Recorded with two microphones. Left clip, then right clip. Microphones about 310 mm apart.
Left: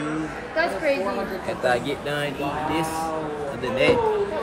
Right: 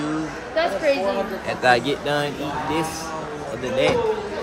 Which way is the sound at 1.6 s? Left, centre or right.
Right.